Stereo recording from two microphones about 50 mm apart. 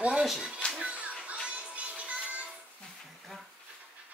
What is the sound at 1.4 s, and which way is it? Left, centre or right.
Music, right.